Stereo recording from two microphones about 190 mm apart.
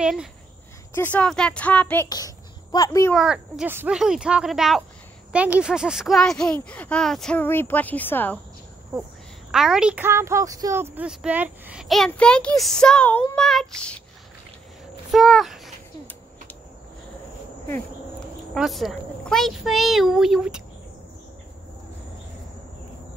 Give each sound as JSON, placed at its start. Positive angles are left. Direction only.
{"t": 0.0, "sound": "a woman's voice", "side_deg": -5}
{"t": 0.9, "sound": "a woman's voice", "side_deg": 10}
{"t": 2.0, "sound": "speech", "side_deg": 20}
{"t": 3.1, "sound": "a woman's voice", "side_deg": 0}
{"t": 9.5, "sound": "a woman's voice", "side_deg": -5}
{"t": 15.0, "sound": "speech", "side_deg": 0}
{"t": 18.5, "sound": "a woman's voice", "side_deg": 0}